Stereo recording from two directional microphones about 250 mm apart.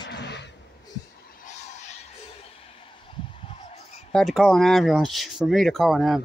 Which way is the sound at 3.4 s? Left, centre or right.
Left.